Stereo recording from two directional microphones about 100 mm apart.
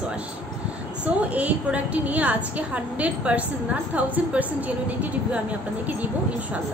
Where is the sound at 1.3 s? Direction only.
15° right (ahead or behind).